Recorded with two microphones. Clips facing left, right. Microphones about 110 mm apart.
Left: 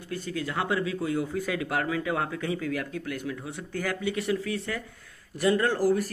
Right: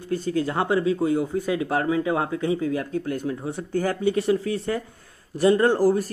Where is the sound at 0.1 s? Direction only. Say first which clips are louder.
Right 8 dB; 30° right (ahead or behind).